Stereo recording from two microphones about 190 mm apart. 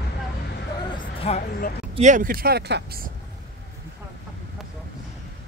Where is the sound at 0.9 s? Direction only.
25° left (ahead or behind).